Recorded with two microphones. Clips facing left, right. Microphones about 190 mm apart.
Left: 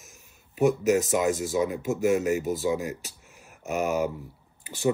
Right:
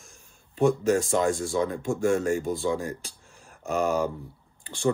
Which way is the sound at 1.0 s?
5° left (ahead or behind).